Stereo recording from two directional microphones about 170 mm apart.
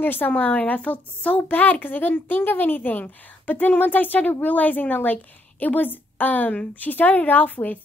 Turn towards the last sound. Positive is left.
turn(degrees=10)  # may be behind; listen again after turning